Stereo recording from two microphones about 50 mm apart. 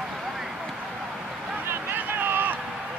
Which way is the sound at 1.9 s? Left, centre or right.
Right.